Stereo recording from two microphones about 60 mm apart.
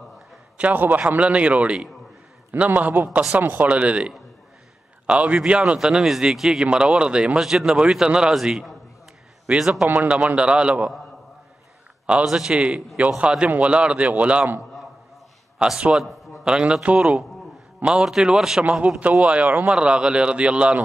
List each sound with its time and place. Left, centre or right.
0.7 s a man's voice: right
12.3 s a man's voice: centre
15.6 s speech: centre
18.6 s a man's voice: centre